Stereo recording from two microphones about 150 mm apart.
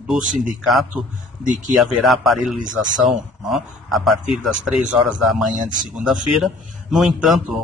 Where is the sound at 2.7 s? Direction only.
30° right (ahead or behind).